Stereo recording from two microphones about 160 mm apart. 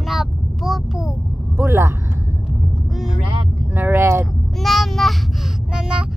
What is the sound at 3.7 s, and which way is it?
Speech, 15° right (ahead or behind).